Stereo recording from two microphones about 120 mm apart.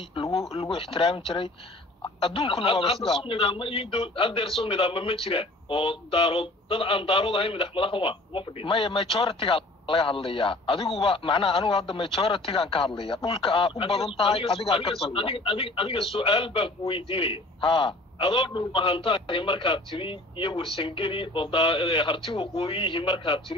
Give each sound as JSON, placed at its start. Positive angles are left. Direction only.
{"t": 0.1, "sound": "a man's voice", "side_deg": 55}